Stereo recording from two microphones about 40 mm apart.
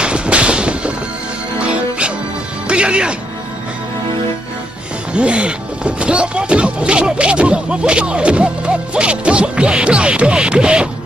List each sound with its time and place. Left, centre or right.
0.0 s a sound: right
1.6 s music: right
5.1 s music: right